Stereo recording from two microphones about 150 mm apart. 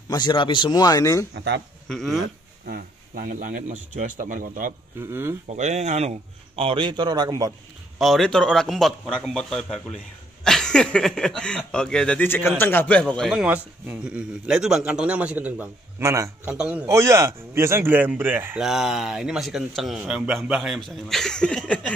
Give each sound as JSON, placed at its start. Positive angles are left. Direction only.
{"t": 0.1, "sound": "speech", "side_deg": 30}
{"t": 1.9, "sound": "a man's voice", "side_deg": 0}
{"t": 2.6, "sound": "speech", "side_deg": -80}
{"t": 5.0, "sound": "a man's voice", "side_deg": -20}
{"t": 5.5, "sound": "a man's voice", "side_deg": -50}
{"t": 8.0, "sound": "a man's voice", "side_deg": 0}
{"t": 16.0, "sound": "a man's voice", "side_deg": -20}
{"t": 16.4, "sound": "a man's voice", "side_deg": -10}
{"t": 16.8, "sound": "a man's voice", "side_deg": -20}
{"t": 18.6, "sound": "a man's voice", "side_deg": -5}